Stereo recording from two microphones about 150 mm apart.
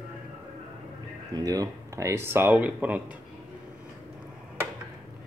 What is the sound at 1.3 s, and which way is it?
Speech, 25° right (ahead or behind).